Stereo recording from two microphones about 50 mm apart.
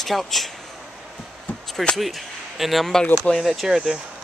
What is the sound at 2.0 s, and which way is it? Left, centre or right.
Speech, centre.